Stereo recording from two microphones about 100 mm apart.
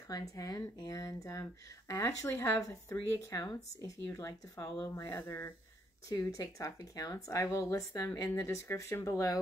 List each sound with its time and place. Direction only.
0.1 s speech: 35° left (ahead or behind)
6.0 s speech: 35° left (ahead or behind)